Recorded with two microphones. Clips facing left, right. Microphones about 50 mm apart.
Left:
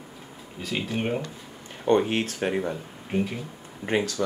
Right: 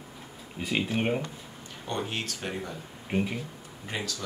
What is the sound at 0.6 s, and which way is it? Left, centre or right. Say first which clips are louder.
Speech: right 1 dB; centre.